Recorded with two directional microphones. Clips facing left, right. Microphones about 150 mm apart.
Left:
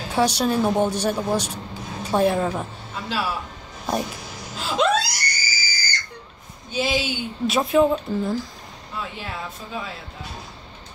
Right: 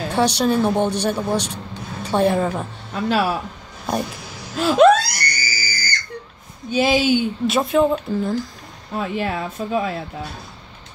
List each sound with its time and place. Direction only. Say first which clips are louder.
0.1 s speech: right 2 dB; centre (ahead or behind)
2.9 s speech: right 8 dB; 60° right (ahead or behind)
3.8 s speech: right 2 dB; centre (ahead or behind)
4.6 s screaming: right 8 dB; 60° right (ahead or behind)
6.7 s speech: right 6 dB; 55° right (ahead or behind)
7.4 s speech: left 1 dB; centre (ahead or behind)
8.9 s speech: right 9 dB; 60° right (ahead or behind)